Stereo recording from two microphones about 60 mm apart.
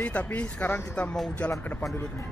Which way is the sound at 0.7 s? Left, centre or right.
Left.